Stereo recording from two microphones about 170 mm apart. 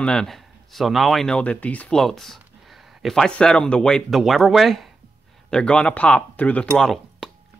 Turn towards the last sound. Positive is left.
turn(degrees=0)  # may be behind; listen again after turning